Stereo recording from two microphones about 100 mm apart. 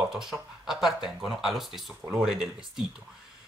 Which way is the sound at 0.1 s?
5° right (ahead or behind).